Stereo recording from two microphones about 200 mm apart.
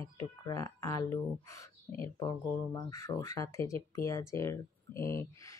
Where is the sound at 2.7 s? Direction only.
15° left (ahead or behind).